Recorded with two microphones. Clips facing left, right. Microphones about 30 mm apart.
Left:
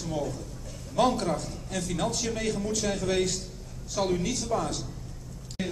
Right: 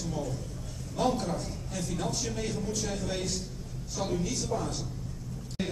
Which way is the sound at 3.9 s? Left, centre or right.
Left.